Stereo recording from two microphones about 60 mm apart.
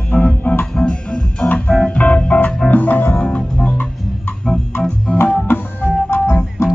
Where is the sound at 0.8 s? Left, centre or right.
Centre; by 3.1 s left.